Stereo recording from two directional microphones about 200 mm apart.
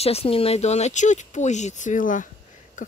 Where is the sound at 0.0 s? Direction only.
30° left (ahead or behind).